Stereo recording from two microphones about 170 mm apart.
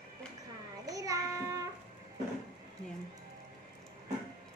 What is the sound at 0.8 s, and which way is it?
Child singing, 20° right (ahead or behind).